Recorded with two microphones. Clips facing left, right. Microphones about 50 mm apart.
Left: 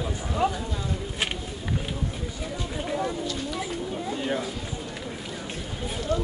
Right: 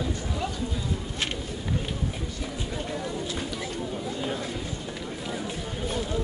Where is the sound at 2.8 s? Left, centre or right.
Centre.